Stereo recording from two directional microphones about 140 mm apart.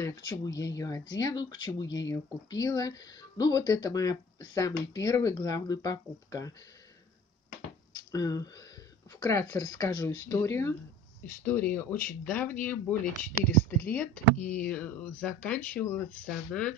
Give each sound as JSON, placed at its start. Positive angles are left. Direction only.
{"t": 0.0, "sound": "speech", "side_deg": 25}
{"t": 7.9, "sound": "speech", "side_deg": 25}